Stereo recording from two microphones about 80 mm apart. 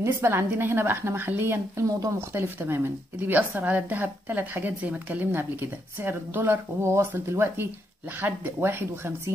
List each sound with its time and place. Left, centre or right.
0.2 s speech: right
1.9 s speech: right
2.1 s speech: right